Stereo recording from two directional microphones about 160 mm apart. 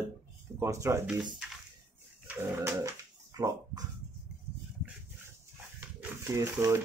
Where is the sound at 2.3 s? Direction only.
15° right (ahead or behind).